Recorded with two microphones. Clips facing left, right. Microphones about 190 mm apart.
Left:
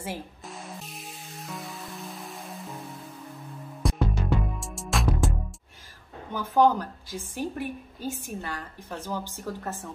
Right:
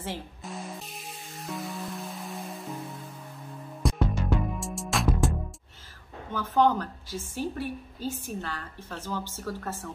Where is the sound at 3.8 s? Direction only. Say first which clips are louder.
Even; centre (ahead or behind).